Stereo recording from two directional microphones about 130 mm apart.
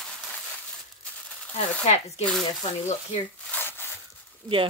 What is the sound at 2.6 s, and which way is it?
Speech, 65° left (ahead or behind).